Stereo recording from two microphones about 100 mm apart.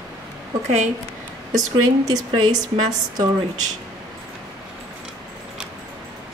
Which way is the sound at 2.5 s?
45° right (ahead or behind).